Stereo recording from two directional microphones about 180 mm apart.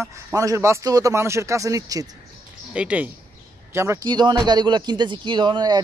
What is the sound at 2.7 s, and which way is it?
A man's voice, 5° right (ahead or behind).